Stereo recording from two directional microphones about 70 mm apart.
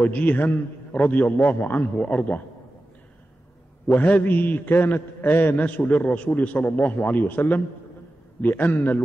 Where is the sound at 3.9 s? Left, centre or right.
Left.